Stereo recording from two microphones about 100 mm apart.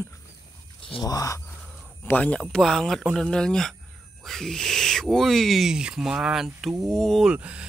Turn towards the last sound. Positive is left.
turn(degrees=-10)  # may be behind; listen again after turning